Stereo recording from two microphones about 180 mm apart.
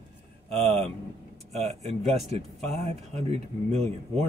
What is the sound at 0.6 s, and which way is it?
Speech, 40° right (ahead or behind).